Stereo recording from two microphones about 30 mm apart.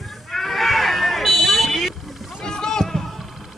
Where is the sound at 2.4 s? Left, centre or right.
Left.